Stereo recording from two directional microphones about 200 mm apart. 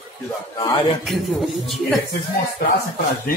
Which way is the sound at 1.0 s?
Centre (ahead or behind).